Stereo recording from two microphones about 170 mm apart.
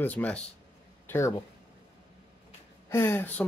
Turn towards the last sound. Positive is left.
turn(degrees=10)  # may be behind; listen again after turning